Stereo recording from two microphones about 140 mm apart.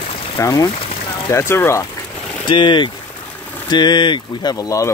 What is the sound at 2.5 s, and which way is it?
Speech, 35° left (ahead or behind).